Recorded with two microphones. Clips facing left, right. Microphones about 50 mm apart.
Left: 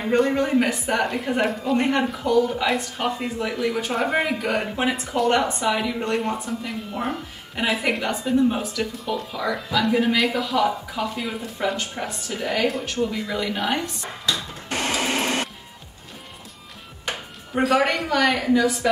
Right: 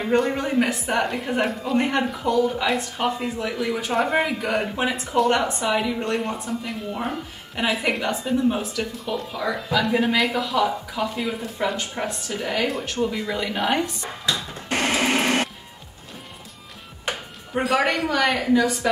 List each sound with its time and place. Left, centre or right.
0.0 s speech: centre
15.0 s music: right
17.1 s speech: centre